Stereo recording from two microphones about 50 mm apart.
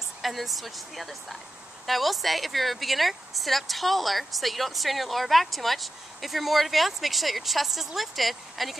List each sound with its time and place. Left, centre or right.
0.2 s speech: centre